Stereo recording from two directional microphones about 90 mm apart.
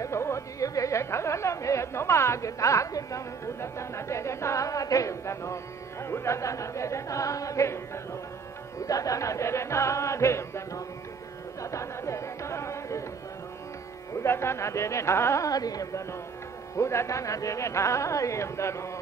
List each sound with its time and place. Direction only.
0.0 s chatter: 30° left (ahead or behind)
3.6 s a sound: 30° left (ahead or behind)
6.0 s speech: 30° left (ahead or behind)
8.8 s music: 40° left (ahead or behind)
14.1 s speech: 30° left (ahead or behind)